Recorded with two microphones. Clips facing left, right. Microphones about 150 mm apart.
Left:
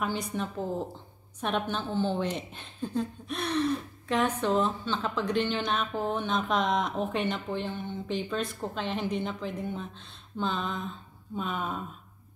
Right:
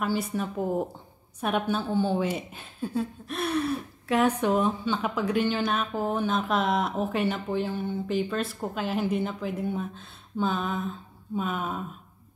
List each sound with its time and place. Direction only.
0.0 s a woman's voice: 5° right (ahead or behind)